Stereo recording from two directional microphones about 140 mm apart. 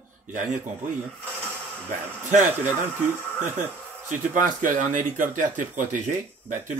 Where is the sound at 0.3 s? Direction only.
65° right (ahead or behind).